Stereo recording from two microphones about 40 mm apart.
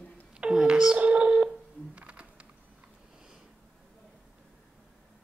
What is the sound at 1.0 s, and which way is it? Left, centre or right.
Telephone dialing, right.